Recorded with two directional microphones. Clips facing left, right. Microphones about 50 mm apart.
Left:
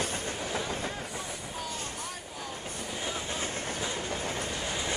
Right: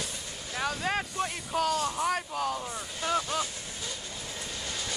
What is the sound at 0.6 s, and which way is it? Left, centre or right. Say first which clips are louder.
Vehicle: right 4 dB; right.